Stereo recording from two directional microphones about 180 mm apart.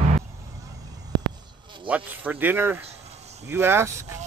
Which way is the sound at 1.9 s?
10° right (ahead or behind).